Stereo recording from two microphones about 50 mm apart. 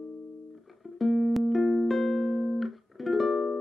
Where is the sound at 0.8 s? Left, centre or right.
Centre.